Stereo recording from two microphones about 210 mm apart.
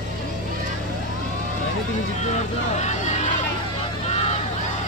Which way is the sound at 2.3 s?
35° left (ahead or behind).